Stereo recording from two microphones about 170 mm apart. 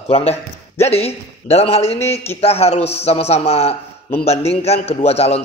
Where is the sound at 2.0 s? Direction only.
15° left (ahead or behind).